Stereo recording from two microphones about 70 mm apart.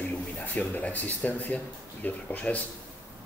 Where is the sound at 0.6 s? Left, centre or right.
Left.